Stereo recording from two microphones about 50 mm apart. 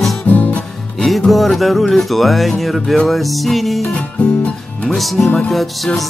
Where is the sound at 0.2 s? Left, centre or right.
Left.